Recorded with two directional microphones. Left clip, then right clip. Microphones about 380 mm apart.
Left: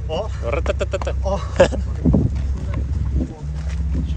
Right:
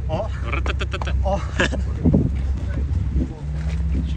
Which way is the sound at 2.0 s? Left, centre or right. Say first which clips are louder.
Left 1 dB; centre.